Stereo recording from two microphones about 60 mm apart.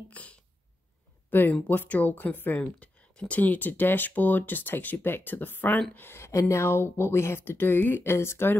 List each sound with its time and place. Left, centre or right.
0.1 s speech: left
1.3 s speech: left
2.6 s speech: centre; by 5.8 s left
5.9 s speech: left